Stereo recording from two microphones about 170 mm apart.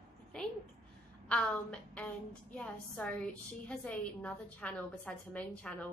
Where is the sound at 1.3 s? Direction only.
5° left (ahead or behind).